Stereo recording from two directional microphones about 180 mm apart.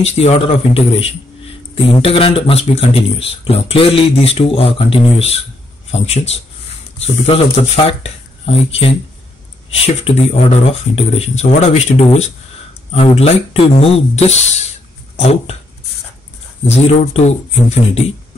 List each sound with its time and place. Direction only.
0.0 s a man's voice: 35° left (ahead or behind)
16.6 s a man's voice: 35° left (ahead or behind)